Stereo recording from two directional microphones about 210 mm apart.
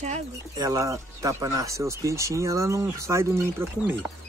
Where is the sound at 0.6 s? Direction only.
15° right (ahead or behind).